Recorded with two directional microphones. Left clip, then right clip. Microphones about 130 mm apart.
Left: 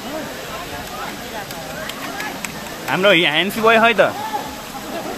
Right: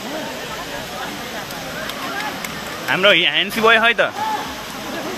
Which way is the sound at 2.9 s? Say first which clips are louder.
Even; 25° left (ahead or behind).